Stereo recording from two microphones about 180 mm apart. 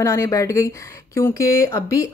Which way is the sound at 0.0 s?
15° left (ahead or behind).